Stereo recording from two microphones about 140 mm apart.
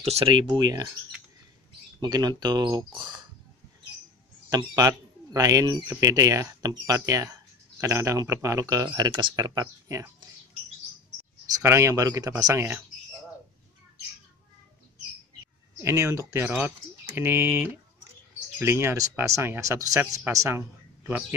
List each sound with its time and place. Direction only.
0.0 s speech: 45° right (ahead or behind); by 0.8 s 30° right (ahead or behind)
2.0 s speech: 30° right (ahead or behind)
4.5 s speech: 25° right (ahead or behind)
11.4 s speech: 20° right (ahead or behind)
15.8 s speech: 20° right (ahead or behind)